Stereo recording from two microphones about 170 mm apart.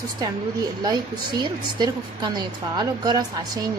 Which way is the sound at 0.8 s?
25° right (ahead or behind).